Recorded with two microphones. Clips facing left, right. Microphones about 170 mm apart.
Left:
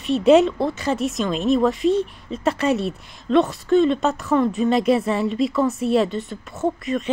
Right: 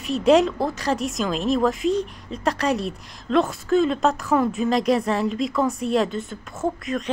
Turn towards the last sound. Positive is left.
turn(degrees=0)  # may be behind; listen again after turning